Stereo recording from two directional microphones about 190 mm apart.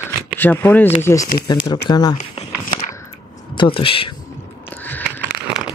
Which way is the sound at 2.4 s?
35° left (ahead or behind).